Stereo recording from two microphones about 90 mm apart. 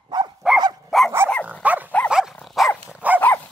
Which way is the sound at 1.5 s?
15° right (ahead or behind).